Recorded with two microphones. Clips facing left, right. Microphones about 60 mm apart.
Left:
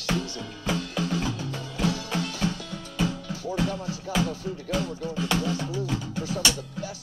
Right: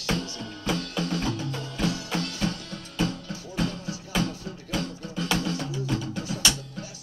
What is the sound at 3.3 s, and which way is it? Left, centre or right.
Music, left.